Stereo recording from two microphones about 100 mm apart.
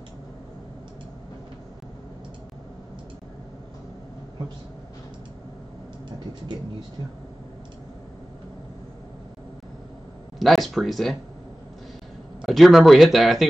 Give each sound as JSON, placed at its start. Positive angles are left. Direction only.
{"t": 10.4, "sound": "speech", "side_deg": 0}
{"t": 12.4, "sound": "speech", "side_deg": 0}